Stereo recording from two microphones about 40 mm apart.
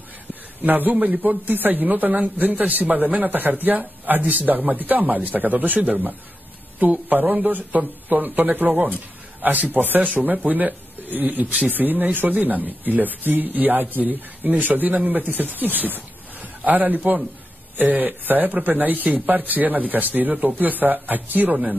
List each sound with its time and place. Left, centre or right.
0.3 s speech: right
1.4 s a man's voice: right